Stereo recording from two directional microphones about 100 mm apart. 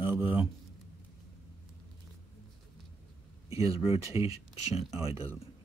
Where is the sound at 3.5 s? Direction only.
35° right (ahead or behind).